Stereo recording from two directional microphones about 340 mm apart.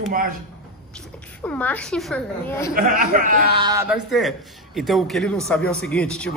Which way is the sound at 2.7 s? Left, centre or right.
Right.